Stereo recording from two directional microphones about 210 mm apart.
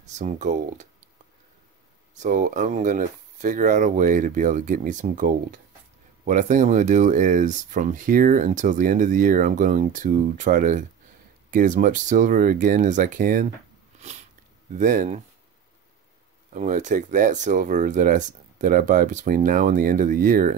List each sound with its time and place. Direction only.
0.0 s speech: 35° right (ahead or behind)
2.2 s speech: 40° right (ahead or behind)
13.9 s a sound: 30° right (ahead or behind)
14.8 s speech: 40° right (ahead or behind)
16.5 s speech: 35° right (ahead or behind)